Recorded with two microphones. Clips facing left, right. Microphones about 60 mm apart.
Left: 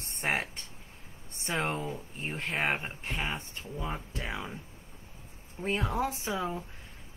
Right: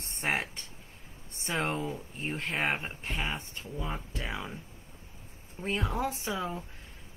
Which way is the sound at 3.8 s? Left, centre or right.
Centre.